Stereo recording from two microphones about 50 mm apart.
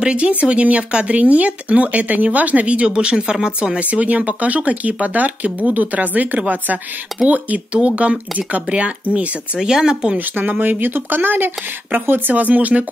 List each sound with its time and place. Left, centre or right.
0.0 s speech: right
10.1 s speech: right